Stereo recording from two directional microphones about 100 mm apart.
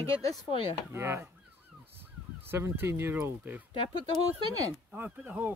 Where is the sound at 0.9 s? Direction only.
25° right (ahead or behind).